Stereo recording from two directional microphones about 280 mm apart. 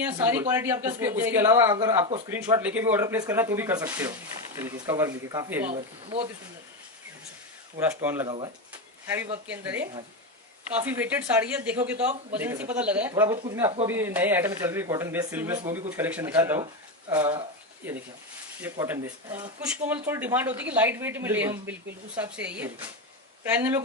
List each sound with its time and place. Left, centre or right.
0.0 s speech: centre
5.7 s speech: right
7.7 s speech: centre